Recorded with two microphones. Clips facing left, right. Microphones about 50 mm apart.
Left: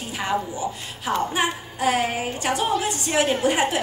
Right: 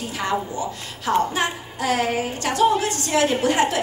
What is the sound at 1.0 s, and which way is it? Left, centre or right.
A woman's voice, centre.